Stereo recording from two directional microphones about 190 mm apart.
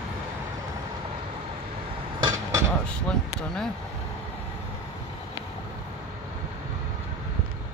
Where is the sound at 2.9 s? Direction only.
5° left (ahead or behind).